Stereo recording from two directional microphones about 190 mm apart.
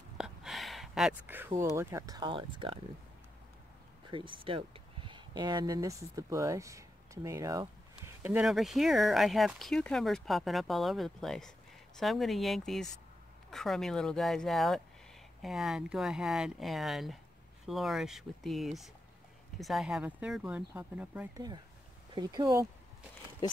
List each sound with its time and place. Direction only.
0.2 s a sound: centre (ahead or behind)
1.8 s speech: 15° right (ahead or behind)
4.1 s speech: 25° right (ahead or behind); by 21.3 s 10° right (ahead or behind)
22.1 s speech: 20° right (ahead or behind)